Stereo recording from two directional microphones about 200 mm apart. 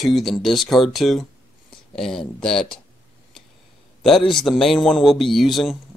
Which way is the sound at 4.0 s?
Centre (ahead or behind).